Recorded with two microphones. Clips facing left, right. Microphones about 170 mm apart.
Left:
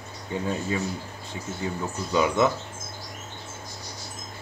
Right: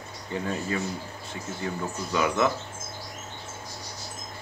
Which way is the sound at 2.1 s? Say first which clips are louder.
Left 3 dB; 25° left (ahead or behind).